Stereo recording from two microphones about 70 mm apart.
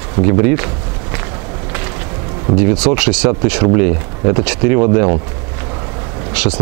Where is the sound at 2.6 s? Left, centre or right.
Centre.